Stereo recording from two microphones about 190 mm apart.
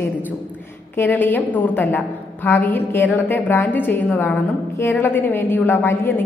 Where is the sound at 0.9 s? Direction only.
10° left (ahead or behind).